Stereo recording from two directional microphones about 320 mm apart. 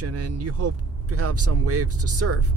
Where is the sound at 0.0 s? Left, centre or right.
Right.